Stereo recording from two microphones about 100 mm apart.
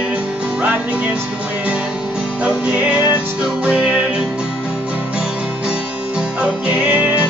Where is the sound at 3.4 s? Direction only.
10° right (ahead or behind).